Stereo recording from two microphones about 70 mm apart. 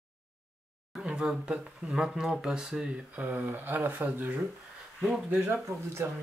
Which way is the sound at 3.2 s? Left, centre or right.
Right.